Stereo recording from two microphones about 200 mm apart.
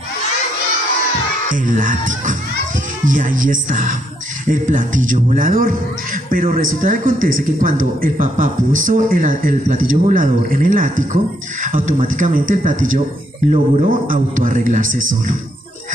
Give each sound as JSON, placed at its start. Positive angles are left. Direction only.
{"t": 1.5, "sound": "a man's voice", "side_deg": -40}